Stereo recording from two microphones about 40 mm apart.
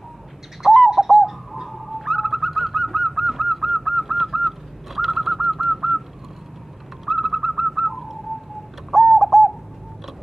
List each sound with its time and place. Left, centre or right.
0.6 s bird: centre
7.1 s bird: centre
8.9 s bird: centre